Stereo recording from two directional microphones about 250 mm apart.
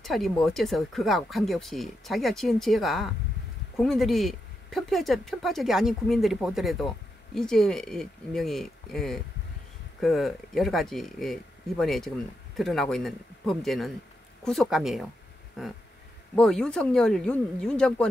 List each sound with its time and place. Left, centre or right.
0.0 s speech: centre
16.3 s speech: centre